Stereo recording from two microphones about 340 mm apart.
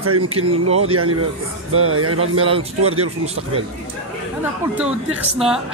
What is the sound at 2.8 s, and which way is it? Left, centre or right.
Speech, right.